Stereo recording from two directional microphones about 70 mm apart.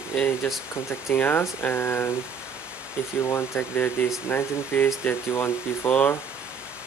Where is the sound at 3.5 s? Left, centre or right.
Left.